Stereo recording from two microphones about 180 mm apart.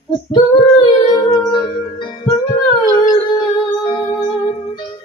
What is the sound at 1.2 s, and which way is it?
Music, 25° left (ahead or behind).